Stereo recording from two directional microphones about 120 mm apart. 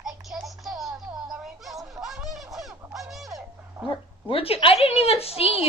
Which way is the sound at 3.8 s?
50° left (ahead or behind).